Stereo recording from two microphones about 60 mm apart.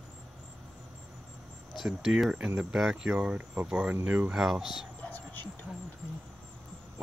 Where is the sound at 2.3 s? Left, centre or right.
Right.